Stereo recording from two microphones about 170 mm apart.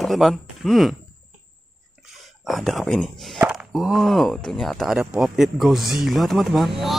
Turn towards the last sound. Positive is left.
turn(degrees=0)  # may be behind; listen again after turning